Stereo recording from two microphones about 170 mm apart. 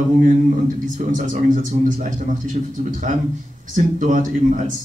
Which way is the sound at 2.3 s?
50° right (ahead or behind).